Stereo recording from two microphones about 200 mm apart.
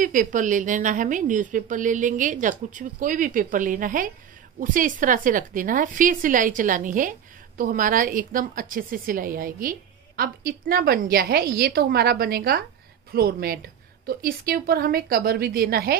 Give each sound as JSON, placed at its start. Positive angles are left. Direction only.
{"t": 0.0, "sound": "a woman's voice", "side_deg": -40}